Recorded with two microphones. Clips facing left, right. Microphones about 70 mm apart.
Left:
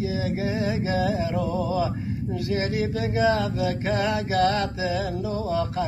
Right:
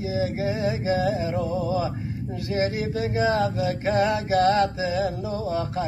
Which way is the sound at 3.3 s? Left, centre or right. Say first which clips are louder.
Right 1 dB; right.